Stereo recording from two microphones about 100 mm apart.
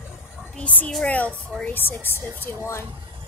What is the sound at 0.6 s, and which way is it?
A woman's voice, 15° left (ahead or behind).